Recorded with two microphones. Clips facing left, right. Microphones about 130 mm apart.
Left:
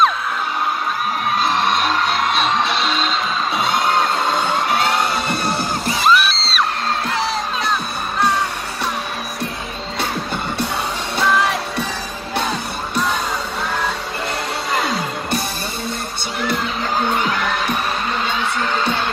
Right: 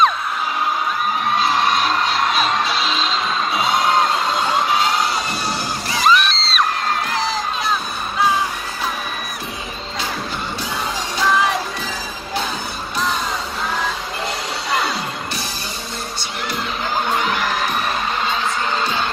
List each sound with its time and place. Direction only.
1.4 s music: centre (ahead or behind)
4.7 s music: 60° left (ahead or behind)
5.9 s music: centre (ahead or behind)
11.2 s music: centre (ahead or behind)